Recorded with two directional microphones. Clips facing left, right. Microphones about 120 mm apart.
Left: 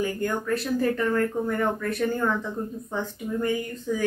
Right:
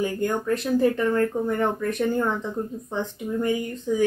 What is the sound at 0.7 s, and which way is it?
Speech, 20° right (ahead or behind).